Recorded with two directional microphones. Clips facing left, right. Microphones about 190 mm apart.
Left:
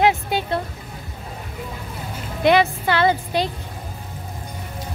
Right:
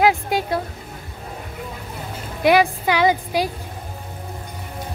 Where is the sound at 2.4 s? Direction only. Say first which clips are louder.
Right 1 dB; 10° right (ahead or behind).